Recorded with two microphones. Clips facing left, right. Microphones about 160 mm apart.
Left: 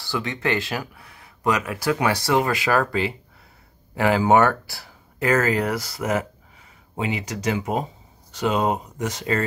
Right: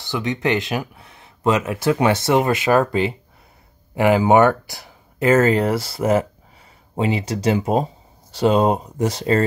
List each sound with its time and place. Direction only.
0.0 s speech: 20° right (ahead or behind)